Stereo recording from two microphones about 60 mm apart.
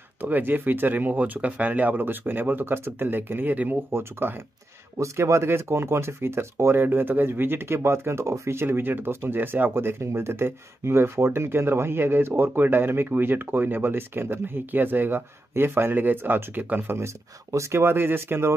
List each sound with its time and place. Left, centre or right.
0.2 s speech: right
4.9 s speech: right
17.0 s speech: right